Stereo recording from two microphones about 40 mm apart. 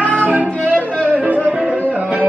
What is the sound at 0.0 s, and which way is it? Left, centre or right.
Music, left.